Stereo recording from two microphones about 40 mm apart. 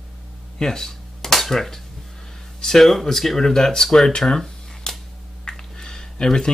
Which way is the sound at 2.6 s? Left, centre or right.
Centre.